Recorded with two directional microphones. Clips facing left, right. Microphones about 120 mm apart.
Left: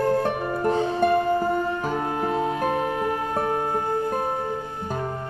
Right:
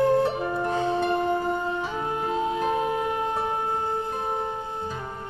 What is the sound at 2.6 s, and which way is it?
Music, 20° right (ahead or behind).